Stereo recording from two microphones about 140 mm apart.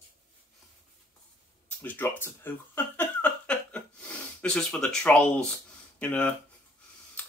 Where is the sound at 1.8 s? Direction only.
10° left (ahead or behind).